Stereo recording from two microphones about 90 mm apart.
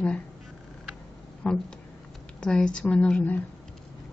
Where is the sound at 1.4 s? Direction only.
15° left (ahead or behind).